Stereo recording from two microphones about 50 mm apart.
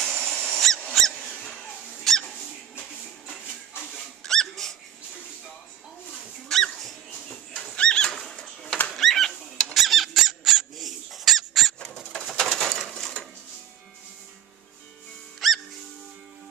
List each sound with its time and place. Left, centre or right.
0.0 s a sound: centre
0.9 s squeak: centre
4.2 s dog: centre
6.5 s dog: centre
7.7 s bird flight: centre
8.9 s rodents: centre
9.3 s a sound: centre
9.8 s squeak: centre
10.1 s a sound: centre
12.1 s bird: centre
15.4 s music: centre